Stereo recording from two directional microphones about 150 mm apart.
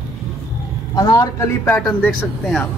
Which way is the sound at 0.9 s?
25° left (ahead or behind).